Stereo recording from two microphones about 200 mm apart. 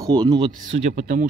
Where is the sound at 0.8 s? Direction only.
40° right (ahead or behind).